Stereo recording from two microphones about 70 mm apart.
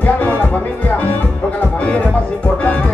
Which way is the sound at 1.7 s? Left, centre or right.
Centre.